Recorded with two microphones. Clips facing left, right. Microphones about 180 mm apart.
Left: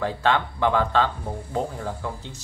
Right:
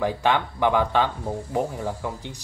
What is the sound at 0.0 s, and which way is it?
Speech, 15° right (ahead or behind).